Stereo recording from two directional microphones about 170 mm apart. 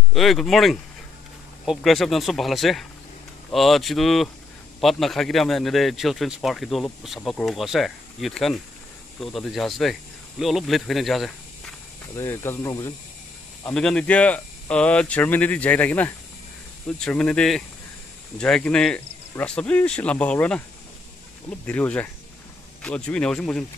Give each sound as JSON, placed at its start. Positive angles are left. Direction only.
{"t": 0.1, "sound": "a man's voice", "side_deg": 0}
{"t": 12.2, "sound": "speech", "side_deg": 15}
{"t": 13.7, "sound": "a man's voice", "side_deg": 5}